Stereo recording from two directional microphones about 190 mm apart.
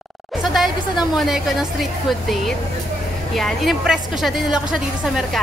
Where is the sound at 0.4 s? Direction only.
Centre (ahead or behind).